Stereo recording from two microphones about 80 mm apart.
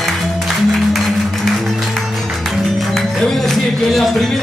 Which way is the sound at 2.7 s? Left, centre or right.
Centre.